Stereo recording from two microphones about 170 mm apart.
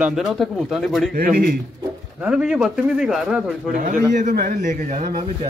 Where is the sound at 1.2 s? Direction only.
55° right (ahead or behind).